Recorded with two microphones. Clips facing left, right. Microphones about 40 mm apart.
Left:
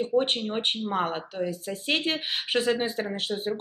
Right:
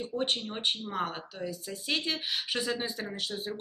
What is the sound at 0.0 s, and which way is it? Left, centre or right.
Speech, left.